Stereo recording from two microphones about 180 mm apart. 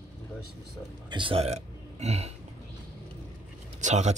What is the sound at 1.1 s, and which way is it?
A man's voice, 30° right (ahead or behind).